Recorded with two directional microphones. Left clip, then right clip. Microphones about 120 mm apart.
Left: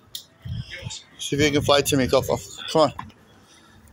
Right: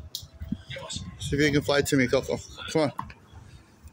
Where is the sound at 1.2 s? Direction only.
20° right (ahead or behind).